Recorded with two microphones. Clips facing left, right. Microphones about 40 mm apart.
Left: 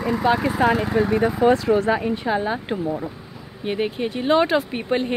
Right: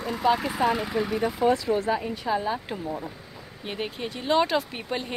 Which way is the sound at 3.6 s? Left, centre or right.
Centre.